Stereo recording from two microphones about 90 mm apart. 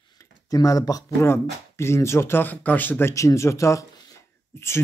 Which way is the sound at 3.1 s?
35° left (ahead or behind).